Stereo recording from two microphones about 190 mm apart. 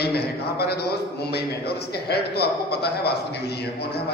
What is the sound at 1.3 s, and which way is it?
Music, 60° left (ahead or behind).